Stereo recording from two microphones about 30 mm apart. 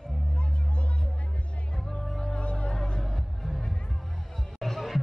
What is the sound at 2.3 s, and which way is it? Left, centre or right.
Music, left.